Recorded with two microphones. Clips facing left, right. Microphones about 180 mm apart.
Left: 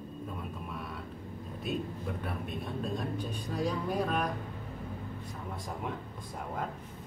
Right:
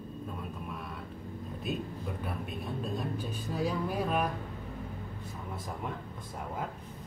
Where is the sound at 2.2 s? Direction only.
Centre (ahead or behind).